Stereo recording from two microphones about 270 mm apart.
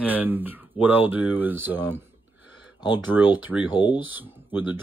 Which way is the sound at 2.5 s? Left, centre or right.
Right.